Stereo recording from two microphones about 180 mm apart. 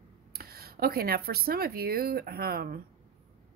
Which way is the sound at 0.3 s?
55° right (ahead or behind).